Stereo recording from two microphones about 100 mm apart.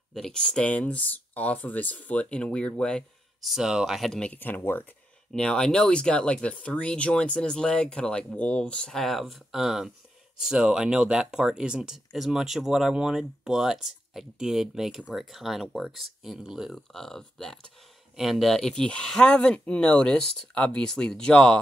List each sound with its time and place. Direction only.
0.1 s speech: 5° left (ahead or behind)
3.4 s speech: 5° right (ahead or behind); by 4.8 s 20° left (ahead or behind)
5.3 s speech: 5° left (ahead or behind)